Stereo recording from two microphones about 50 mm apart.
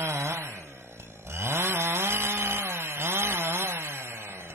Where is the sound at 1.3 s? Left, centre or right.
Right.